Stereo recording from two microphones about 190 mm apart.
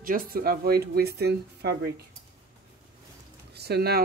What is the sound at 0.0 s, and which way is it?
Speech, 50° right (ahead or behind).